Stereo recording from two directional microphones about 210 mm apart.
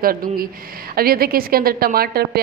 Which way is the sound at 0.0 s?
45° right (ahead or behind).